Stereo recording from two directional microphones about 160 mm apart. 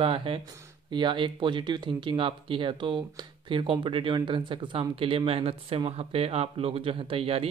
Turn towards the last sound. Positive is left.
turn(degrees=-35)  # may be behind; listen again after turning